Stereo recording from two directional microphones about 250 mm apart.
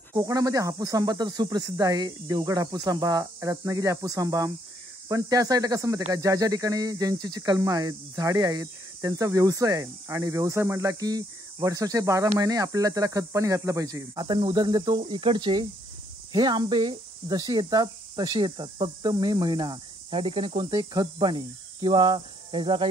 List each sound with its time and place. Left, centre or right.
0.1 s speech: centre